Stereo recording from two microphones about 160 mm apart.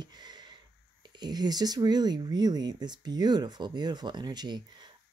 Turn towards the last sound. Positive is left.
turn(degrees=-25)  # may be behind; listen again after turning